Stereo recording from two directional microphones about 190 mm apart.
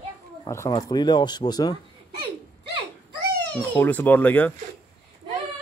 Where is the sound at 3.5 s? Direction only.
10° left (ahead or behind).